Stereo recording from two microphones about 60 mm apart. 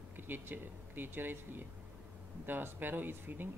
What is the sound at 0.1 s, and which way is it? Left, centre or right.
Speech, right.